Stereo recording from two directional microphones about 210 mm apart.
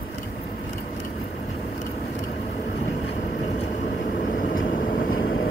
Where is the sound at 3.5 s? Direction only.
55° left (ahead or behind).